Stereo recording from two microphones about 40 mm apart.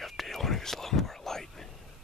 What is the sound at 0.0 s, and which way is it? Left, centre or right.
Whispering, centre.